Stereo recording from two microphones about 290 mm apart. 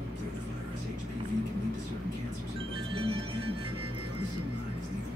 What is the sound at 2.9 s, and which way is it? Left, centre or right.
Music, centre.